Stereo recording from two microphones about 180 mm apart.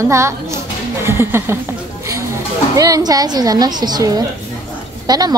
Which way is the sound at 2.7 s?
20° right (ahead or behind).